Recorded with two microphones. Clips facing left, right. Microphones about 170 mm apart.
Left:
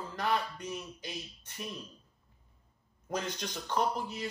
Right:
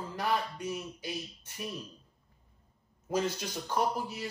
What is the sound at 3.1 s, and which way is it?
Speech, 10° right (ahead or behind).